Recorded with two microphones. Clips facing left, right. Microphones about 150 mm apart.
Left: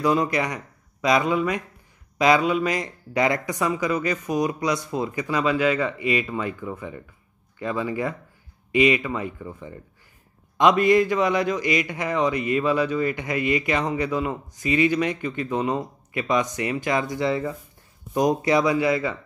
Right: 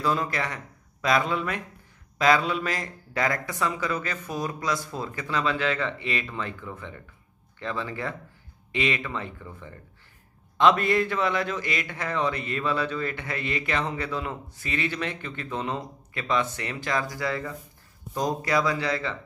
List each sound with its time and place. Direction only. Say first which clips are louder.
0.0 s a man's voice: left 5 dB; 15° left (ahead or behind)